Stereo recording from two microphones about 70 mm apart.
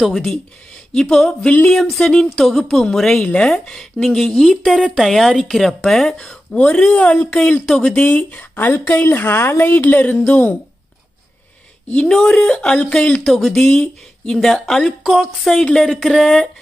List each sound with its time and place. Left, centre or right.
0.9 s a woman's voice: centre
8.0 s speech: left
11.9 s speech: centre
12.5 s speech: centre
13.2 s a woman's voice: centre